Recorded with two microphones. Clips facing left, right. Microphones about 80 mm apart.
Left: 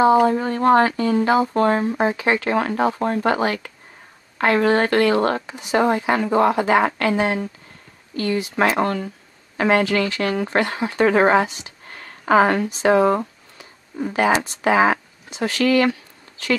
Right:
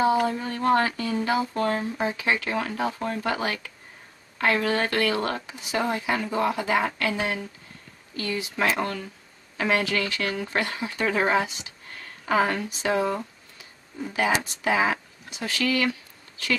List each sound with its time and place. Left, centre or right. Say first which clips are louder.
0.3 s speech: left 7 dB; left
13.2 s a sound: left 7 dB; left
14.4 s speech: left 7 dB; left